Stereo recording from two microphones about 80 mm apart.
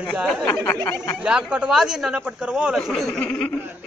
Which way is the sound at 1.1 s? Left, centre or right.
Centre.